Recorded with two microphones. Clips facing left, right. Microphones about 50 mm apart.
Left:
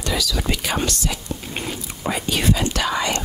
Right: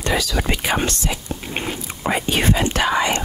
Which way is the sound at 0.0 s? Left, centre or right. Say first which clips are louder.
Right 3 dB; right.